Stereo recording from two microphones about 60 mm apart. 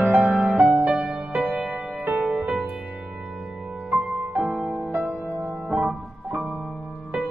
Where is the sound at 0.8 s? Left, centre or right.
Centre.